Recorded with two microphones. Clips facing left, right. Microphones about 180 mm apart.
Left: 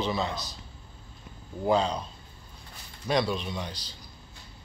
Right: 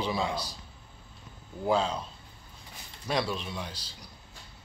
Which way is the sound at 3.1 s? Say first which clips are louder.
Left 4 dB; 5° right (ahead or behind).